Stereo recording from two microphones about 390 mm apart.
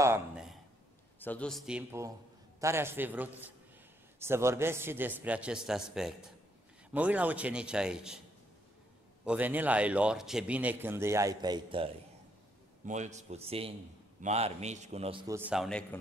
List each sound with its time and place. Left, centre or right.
0.0 s a sound: centre
1.2 s a man's voice: centre
9.2 s a man's voice: centre